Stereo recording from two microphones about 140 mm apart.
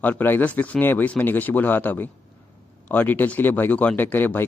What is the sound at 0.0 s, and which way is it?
Speech, 15° left (ahead or behind).